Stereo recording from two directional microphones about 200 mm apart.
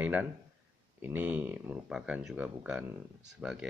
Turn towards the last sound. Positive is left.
turn(degrees=-5)  # may be behind; listen again after turning